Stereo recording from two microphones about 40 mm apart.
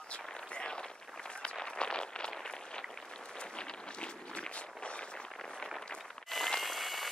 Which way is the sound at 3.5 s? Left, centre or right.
Left.